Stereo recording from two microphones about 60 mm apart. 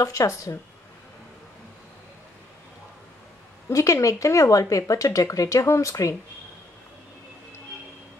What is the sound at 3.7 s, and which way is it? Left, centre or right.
Speech, left.